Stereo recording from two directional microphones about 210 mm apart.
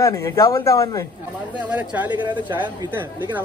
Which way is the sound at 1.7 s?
5° right (ahead or behind).